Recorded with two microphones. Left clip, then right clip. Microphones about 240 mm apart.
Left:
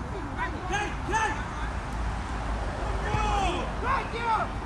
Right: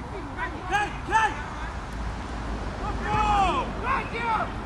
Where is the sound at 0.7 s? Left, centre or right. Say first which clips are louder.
Right 7 dB; centre.